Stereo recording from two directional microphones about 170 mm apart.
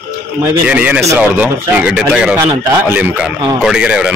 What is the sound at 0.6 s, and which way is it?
A man's voice, 5° right (ahead or behind).